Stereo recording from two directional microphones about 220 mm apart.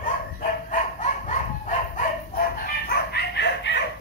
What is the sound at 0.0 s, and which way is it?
Dog, 35° left (ahead or behind).